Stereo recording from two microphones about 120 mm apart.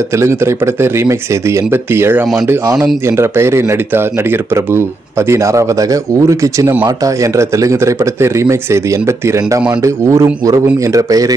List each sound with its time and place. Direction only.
0.1 s speech: 25° right (ahead or behind)